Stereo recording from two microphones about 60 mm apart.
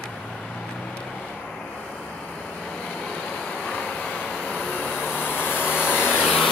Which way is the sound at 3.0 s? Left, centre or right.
Centre.